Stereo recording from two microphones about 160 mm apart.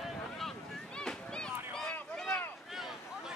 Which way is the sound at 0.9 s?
5° left (ahead or behind).